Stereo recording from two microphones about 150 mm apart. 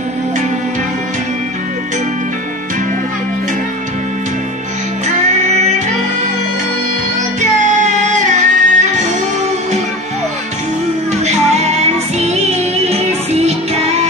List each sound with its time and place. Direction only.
5.0 s music: 50° right (ahead or behind)
8.0 s music: 55° right (ahead or behind)
11.2 s music: 45° right (ahead or behind)